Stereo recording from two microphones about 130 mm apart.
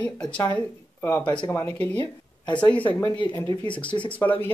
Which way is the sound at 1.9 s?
35° left (ahead or behind).